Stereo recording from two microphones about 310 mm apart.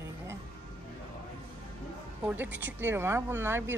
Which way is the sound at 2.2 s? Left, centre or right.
Centre.